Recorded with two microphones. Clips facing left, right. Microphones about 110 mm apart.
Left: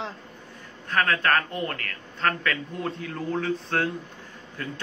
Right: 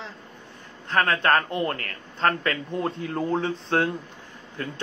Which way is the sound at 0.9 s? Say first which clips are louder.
Right 2 dB; 30° right (ahead or behind).